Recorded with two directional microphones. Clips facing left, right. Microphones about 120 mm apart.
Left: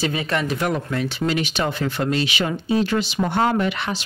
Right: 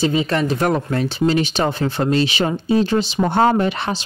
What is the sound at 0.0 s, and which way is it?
Speech, 25° right (ahead or behind).